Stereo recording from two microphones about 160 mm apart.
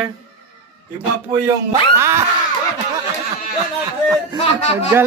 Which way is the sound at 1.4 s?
20° right (ahead or behind).